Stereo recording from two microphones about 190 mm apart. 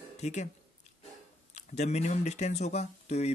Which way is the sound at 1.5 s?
35° left (ahead or behind).